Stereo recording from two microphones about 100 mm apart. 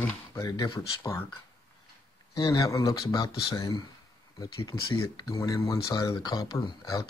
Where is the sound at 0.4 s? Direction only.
40° left (ahead or behind).